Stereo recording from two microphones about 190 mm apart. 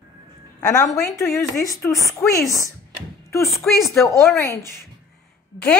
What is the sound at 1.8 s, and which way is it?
Speech, 15° left (ahead or behind).